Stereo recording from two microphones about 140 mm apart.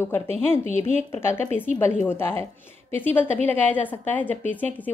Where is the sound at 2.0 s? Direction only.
15° left (ahead or behind).